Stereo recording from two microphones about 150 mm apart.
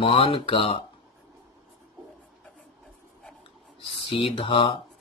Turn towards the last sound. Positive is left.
turn(degrees=35)  # may be behind; listen again after turning